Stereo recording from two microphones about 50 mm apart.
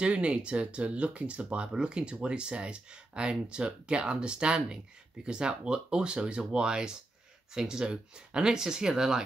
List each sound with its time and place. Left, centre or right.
0.0 s speech: right